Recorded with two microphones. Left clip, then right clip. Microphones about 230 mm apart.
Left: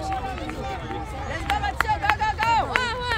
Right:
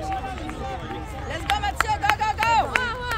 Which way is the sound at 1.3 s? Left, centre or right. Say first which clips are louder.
Right 1 dB; right.